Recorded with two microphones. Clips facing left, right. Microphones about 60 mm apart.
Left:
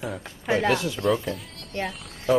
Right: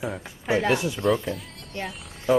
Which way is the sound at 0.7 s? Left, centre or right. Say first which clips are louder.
Even; centre.